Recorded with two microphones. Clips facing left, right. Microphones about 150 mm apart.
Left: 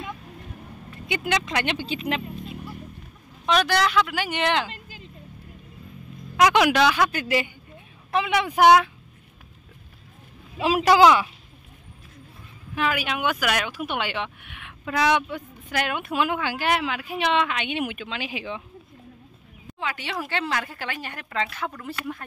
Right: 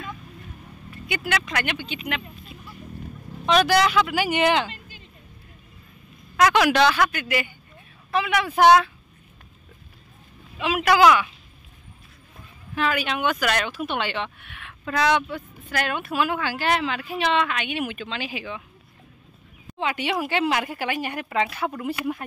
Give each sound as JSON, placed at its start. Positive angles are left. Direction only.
{"t": 1.0, "sound": "speech", "side_deg": 25}
{"t": 3.4, "sound": "speech", "side_deg": 0}
{"t": 6.3, "sound": "speech", "side_deg": 15}
{"t": 6.7, "sound": "speech", "side_deg": 5}
{"t": 7.1, "sound": "speech", "side_deg": 30}
{"t": 8.1, "sound": "speech", "side_deg": 20}
{"t": 10.6, "sound": "speech", "side_deg": 30}
{"t": 12.7, "sound": "speech", "side_deg": 10}
{"t": 19.8, "sound": "a woman's voice", "side_deg": -20}